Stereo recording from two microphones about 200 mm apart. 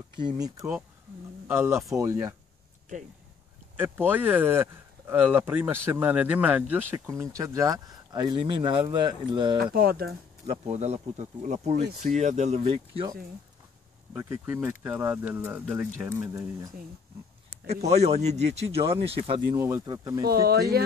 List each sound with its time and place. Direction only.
0.2 s speech: 20° right (ahead or behind)
3.7 s speech: 10° right (ahead or behind)
9.6 s speech: 50° right (ahead or behind)
10.4 s speech: 35° right (ahead or behind)
14.1 s speech: 10° right (ahead or behind)
17.8 s speech: 30° right (ahead or behind)
19.5 s speech: 15° right (ahead or behind)
20.2 s speech: 50° right (ahead or behind)